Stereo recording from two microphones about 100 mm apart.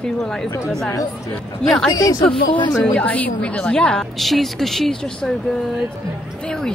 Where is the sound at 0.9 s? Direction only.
35° left (ahead or behind).